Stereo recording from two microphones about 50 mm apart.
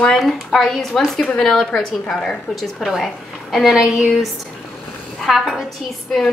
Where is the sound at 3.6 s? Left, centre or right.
Centre.